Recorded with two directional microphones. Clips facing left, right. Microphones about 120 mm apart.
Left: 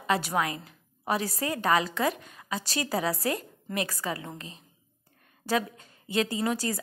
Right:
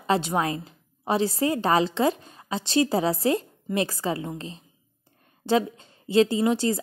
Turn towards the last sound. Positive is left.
turn(degrees=-25)  # may be behind; listen again after turning